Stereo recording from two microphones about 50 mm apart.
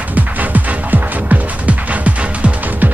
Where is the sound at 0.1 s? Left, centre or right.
Right.